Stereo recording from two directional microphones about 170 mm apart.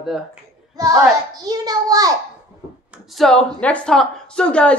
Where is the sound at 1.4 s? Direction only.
25° right (ahead or behind).